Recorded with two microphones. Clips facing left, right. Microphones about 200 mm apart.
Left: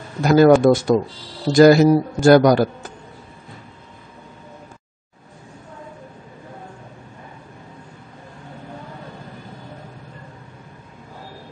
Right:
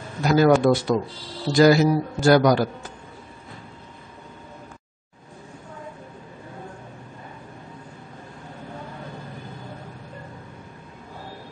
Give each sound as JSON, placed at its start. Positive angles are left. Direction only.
{"t": 0.2, "sound": "a man's voice", "side_deg": 50}